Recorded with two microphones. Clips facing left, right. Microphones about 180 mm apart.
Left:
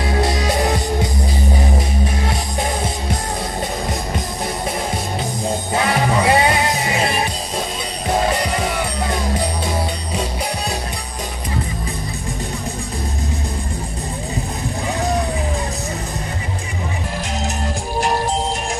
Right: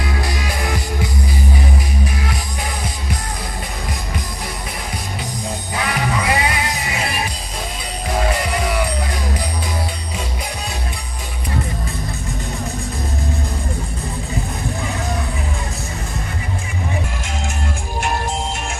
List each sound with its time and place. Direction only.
0.0 s music: 30° left (ahead or behind)
0.4 s music: 40° left (ahead or behind)
5.7 s music: 35° left (ahead or behind)